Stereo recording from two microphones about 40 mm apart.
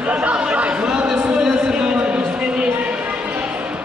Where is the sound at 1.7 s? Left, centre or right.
Right.